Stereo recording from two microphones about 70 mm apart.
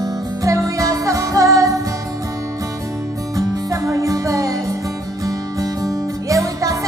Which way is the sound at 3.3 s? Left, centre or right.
Right.